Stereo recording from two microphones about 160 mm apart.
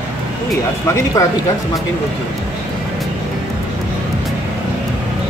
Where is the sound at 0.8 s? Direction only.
20° left (ahead or behind).